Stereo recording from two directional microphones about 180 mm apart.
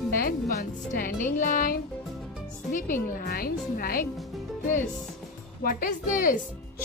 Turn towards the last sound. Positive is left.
turn(degrees=50)  # may be behind; listen again after turning